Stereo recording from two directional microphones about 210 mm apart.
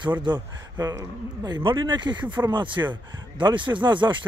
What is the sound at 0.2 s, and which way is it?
Speech, 20° right (ahead or behind).